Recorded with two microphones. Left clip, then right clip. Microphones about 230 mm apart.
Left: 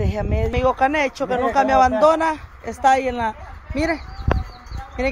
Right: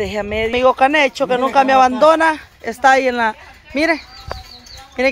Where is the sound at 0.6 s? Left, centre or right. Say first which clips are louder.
Right 5 dB; right.